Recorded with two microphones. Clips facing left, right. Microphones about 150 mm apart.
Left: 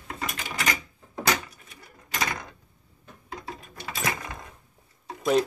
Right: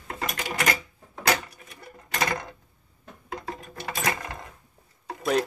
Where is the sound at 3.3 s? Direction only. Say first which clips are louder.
Right 3 dB; 60° right (ahead or behind).